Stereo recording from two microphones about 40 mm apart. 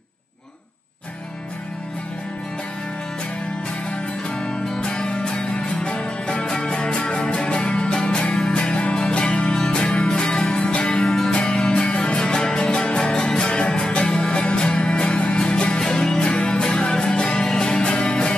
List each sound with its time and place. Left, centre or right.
4.4 s music: centre